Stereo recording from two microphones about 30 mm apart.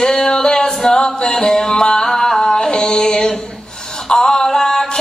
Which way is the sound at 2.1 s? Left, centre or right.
Centre.